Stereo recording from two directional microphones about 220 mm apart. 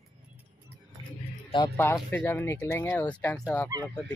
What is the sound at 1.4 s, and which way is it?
Music, 20° left (ahead or behind).